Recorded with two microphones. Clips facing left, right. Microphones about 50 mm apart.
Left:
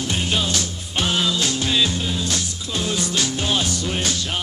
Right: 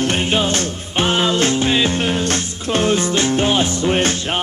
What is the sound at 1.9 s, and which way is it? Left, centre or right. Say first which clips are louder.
Music: right 6 dB; right.